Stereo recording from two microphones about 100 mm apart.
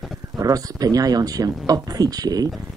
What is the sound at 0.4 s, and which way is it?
Speech, 40° right (ahead or behind).